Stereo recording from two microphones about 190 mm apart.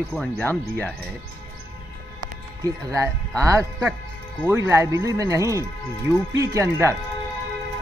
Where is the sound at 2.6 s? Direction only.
15° right (ahead or behind).